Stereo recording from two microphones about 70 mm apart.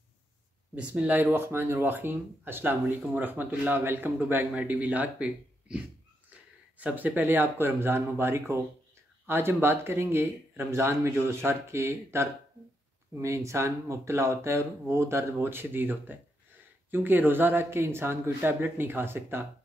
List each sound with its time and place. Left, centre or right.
0.7 s speech: centre